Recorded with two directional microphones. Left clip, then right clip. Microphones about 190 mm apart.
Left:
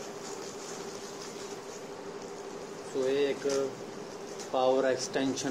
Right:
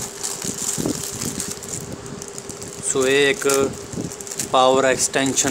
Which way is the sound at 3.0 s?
40° right (ahead or behind).